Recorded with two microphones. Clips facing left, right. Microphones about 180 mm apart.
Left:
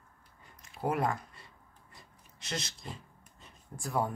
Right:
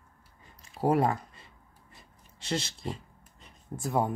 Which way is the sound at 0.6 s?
30° right (ahead or behind).